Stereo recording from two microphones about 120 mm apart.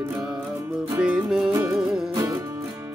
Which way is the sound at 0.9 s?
10° right (ahead or behind).